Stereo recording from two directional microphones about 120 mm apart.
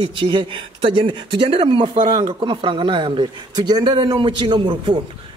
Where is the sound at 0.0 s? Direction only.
45° right (ahead or behind).